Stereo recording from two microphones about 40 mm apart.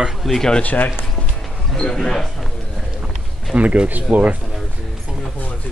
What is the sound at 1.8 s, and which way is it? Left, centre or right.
Speech, centre.